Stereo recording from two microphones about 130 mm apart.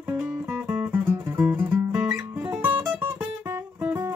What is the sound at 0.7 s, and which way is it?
Music, 15° right (ahead or behind).